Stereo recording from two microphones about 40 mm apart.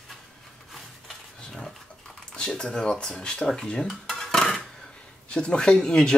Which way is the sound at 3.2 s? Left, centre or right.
Left.